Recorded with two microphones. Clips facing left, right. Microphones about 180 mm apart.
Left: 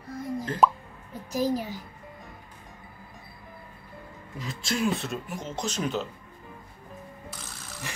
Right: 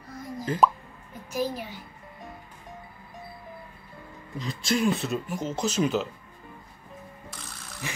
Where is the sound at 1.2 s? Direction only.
40° left (ahead or behind).